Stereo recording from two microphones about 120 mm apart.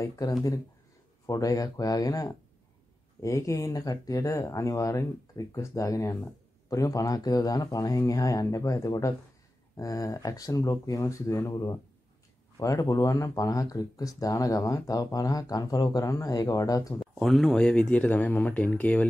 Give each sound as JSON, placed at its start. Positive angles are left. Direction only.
{"t": 0.0, "sound": "speech", "side_deg": 30}
{"t": 17.0, "sound": "speech", "side_deg": 0}